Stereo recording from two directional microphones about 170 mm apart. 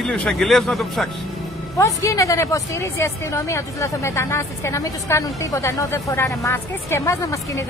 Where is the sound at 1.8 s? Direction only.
20° left (ahead or behind).